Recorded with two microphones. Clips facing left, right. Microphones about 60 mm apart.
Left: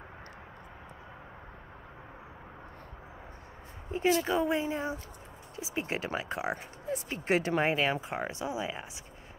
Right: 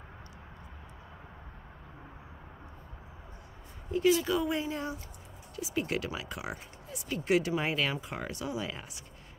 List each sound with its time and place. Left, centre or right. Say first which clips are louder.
3.9 s speech: right 1 dB; left